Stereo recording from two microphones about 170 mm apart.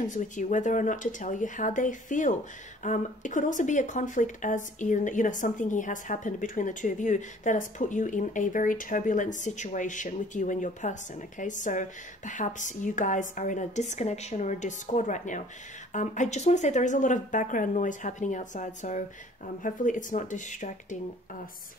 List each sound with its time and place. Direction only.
0.0 s speech: 45° left (ahead or behind)